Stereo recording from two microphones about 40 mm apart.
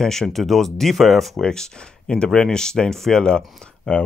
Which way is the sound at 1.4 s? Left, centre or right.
Centre.